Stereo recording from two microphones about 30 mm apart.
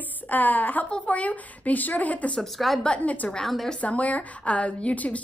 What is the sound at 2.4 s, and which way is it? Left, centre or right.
Speech, centre.